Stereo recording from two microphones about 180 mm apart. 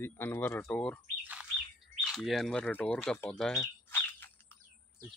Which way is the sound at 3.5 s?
10° left (ahead or behind).